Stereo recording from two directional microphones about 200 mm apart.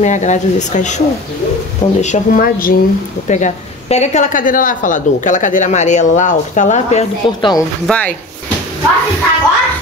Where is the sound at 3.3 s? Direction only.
35° left (ahead or behind).